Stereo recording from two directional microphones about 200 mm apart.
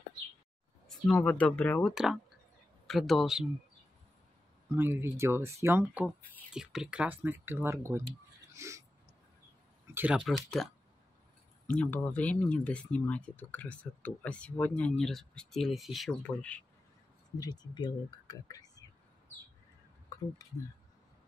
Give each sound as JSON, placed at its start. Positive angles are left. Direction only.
{"t": 0.8, "sound": "speech", "side_deg": 5}
{"t": 4.7, "sound": "speech", "side_deg": -10}
{"t": 8.5, "sound": "a sound", "side_deg": -15}
{"t": 9.9, "sound": "speech", "side_deg": -5}
{"t": 17.4, "sound": "speech", "side_deg": 20}